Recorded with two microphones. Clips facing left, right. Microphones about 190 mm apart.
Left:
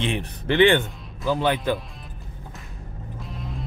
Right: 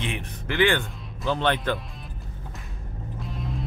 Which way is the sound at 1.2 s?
5° left (ahead or behind).